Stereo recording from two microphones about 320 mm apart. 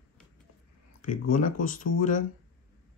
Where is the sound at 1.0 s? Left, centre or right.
Left.